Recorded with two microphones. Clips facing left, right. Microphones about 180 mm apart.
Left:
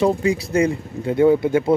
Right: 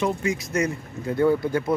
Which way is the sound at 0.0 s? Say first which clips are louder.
Left 6 dB; 35° left (ahead or behind).